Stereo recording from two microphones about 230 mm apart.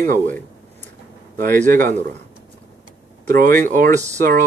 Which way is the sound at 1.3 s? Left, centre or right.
Right.